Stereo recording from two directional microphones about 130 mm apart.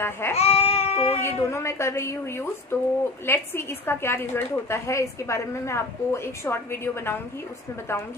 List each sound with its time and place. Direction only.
0.0 s a woman's voice: 20° left (ahead or behind)
0.4 s a sound: 50° left (ahead or behind)
1.2 s a woman's voice: 20° left (ahead or behind)